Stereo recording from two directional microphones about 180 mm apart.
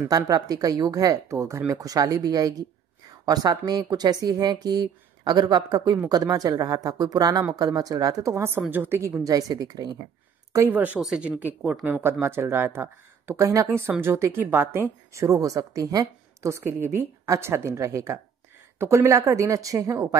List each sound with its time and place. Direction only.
0.3 s speech: 20° right (ahead or behind)